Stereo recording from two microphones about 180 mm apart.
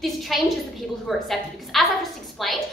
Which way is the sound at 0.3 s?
Centre (ahead or behind).